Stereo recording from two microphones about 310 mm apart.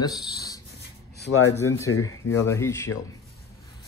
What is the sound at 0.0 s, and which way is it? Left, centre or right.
Speech, centre.